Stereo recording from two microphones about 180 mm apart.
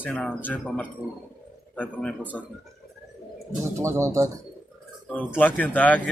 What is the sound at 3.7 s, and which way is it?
Speech, 15° right (ahead or behind).